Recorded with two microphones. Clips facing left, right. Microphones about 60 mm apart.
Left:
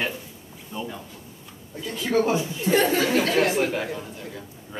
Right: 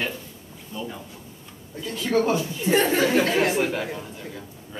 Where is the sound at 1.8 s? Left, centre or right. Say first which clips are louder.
Even; centre.